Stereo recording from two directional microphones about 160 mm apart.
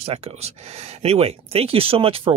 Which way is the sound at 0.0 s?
40° right (ahead or behind).